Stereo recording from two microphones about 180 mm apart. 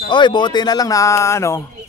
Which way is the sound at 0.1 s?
25° left (ahead or behind).